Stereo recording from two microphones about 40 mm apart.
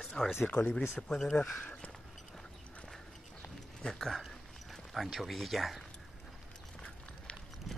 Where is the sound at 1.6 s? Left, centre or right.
Left.